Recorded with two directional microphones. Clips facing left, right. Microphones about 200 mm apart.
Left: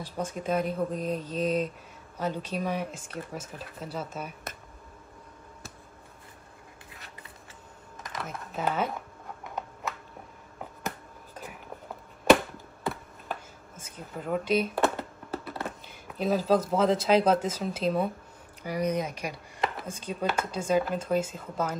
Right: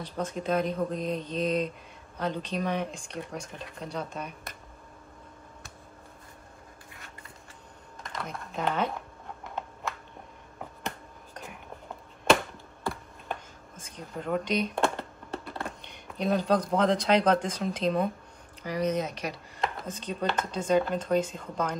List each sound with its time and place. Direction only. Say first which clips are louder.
0.0 s speech: right 1 dB; 10° left (ahead or behind)
8.1 s a sound: even; 5° left (ahead or behind)
12.8 s computer keyboard: left 1 dB; 5° left (ahead or behind)
18.6 s speech: even; 10° left (ahead or behind)